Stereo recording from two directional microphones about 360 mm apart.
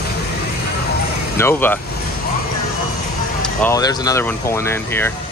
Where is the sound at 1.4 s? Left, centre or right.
Centre.